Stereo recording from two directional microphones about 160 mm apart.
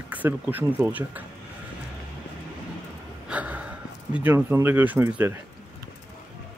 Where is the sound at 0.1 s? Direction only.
10° right (ahead or behind).